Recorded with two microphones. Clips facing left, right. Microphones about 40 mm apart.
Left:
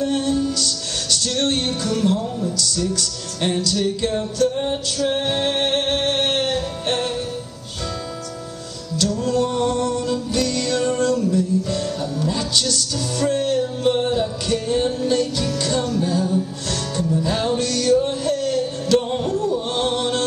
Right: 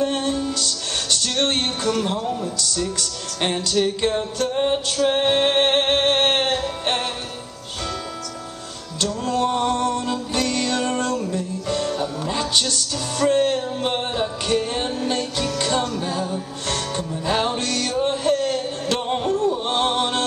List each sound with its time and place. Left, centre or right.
0.0 s music: right
8.9 s music: right